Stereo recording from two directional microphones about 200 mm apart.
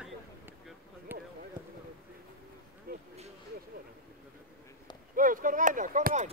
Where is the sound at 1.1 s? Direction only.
10° right (ahead or behind).